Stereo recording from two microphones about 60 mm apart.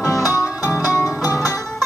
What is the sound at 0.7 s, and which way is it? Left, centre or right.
Music, left.